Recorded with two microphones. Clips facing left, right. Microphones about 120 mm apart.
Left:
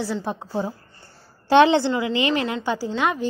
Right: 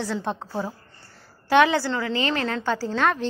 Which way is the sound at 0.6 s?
20° left (ahead or behind).